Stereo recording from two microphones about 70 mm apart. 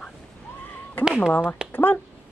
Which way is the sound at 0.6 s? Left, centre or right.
Left.